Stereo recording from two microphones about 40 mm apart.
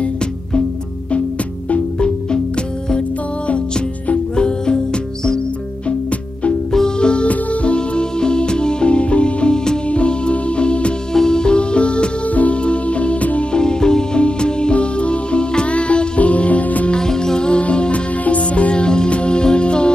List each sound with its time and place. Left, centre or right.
0.0 s music: left
2.0 s music: left
4.1 s music: left
7.0 s music: left
13.5 s music: centre; by 16.9 s left
16.9 s music: centre